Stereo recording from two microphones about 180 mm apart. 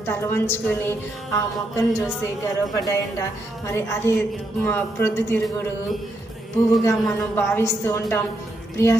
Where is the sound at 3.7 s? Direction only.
15° left (ahead or behind).